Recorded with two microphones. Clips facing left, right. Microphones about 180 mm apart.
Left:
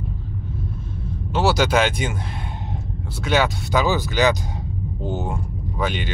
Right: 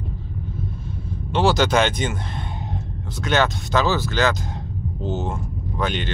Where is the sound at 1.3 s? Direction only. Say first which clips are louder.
Right 1 dB; 5° left (ahead or behind).